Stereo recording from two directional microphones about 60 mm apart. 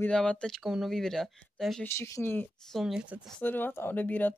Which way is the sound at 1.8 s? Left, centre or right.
Left.